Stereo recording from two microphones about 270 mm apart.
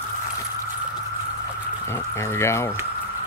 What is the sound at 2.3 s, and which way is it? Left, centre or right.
Speech, centre.